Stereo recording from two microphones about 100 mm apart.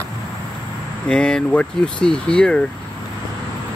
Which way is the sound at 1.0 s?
10° left (ahead or behind).